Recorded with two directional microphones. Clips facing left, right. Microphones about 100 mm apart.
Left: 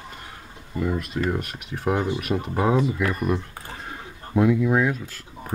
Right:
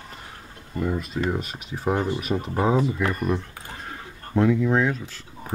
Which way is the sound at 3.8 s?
5° left (ahead or behind).